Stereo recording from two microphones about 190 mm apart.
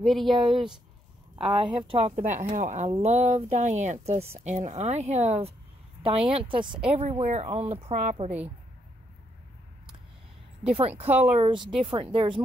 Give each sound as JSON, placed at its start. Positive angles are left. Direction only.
{"t": 0.0, "sound": "speech", "side_deg": 0}
{"t": 1.4, "sound": "speech", "side_deg": -30}
{"t": 11.1, "sound": "speech", "side_deg": -10}
{"t": 11.4, "sound": "speech", "side_deg": -25}